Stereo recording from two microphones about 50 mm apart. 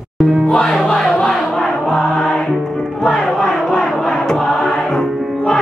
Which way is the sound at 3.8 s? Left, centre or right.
Centre.